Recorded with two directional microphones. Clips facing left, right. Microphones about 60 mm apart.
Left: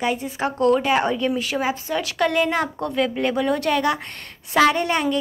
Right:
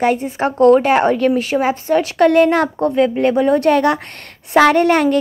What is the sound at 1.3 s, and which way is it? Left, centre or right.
A woman's voice, right.